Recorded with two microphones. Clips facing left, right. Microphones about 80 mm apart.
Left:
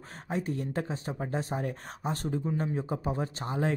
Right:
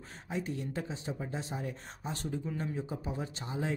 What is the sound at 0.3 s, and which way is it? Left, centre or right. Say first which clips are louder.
Speech: left 4 dB; left.